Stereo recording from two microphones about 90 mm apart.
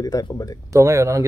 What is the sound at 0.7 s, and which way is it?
Speech, 35° right (ahead or behind).